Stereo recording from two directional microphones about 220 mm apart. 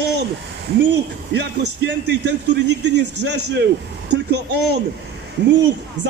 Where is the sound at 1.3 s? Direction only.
50° right (ahead or behind).